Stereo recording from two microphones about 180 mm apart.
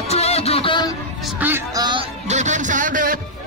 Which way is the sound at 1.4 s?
10° right (ahead or behind).